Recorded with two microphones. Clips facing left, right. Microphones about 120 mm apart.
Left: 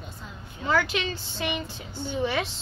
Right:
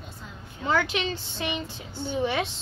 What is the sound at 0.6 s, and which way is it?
A woman's voice, 25° right (ahead or behind).